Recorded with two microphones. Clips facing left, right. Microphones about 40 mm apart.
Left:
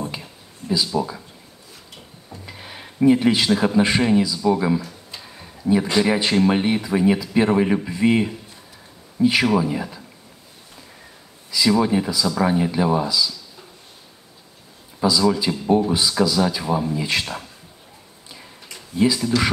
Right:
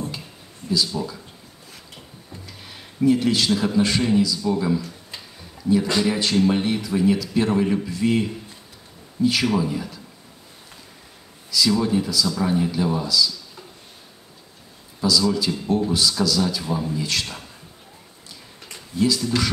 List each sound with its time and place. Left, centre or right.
0.9 s speech: left
2.4 s a sound: left
3.0 s a man's voice: left
11.5 s speech: left
15.0 s speech: left
15.5 s speech: left
15.9 s speech: left
18.9 s speech: left